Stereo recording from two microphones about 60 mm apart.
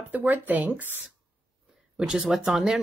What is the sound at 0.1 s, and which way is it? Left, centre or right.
Speech, right.